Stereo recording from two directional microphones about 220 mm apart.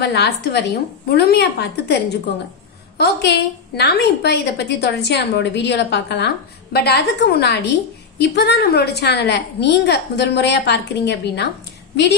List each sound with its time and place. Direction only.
0.0 s a woman's voice: 50° left (ahead or behind)
3.0 s a woman's voice: 50° left (ahead or behind)